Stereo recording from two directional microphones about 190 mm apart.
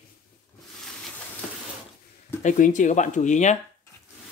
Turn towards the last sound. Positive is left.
turn(degrees=40)  # may be behind; listen again after turning